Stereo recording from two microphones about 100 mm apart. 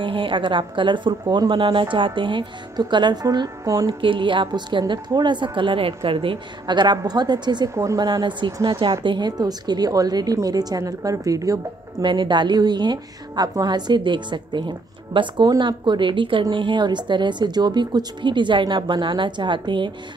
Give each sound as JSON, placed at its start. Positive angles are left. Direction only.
{"t": 0.0, "sound": "a woman's voice", "side_deg": -60}
{"t": 4.0, "sound": "a woman's voice", "side_deg": -55}
{"t": 7.7, "sound": "a woman's voice", "side_deg": -35}
{"t": 8.6, "sound": "a woman's voice", "side_deg": -60}
{"t": 12.0, "sound": "a woman's voice", "side_deg": -50}